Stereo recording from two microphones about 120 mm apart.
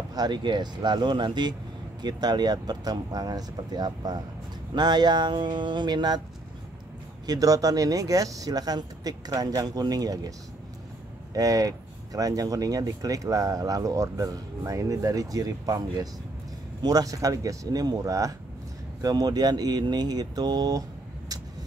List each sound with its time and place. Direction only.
0.1 s speech: 35° right (ahead or behind)
7.2 s speech: 30° right (ahead or behind)
11.3 s speech: 30° right (ahead or behind)